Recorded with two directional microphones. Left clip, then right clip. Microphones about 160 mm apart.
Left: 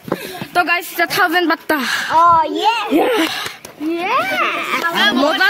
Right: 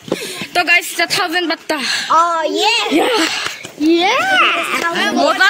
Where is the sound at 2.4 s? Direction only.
70° right (ahead or behind).